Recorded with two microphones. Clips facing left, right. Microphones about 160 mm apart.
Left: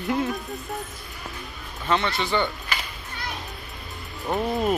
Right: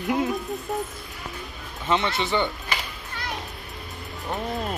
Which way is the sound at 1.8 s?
20° right (ahead or behind).